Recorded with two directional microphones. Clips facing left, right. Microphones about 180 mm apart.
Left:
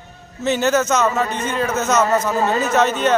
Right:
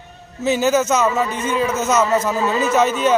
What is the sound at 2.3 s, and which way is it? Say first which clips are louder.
Speech: left 1 dB; 50° left (ahead or behind).